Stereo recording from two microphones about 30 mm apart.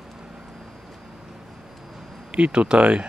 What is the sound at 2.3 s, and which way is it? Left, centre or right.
Speech, right.